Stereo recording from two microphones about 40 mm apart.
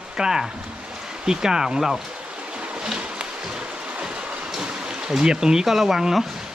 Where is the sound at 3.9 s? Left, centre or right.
Right.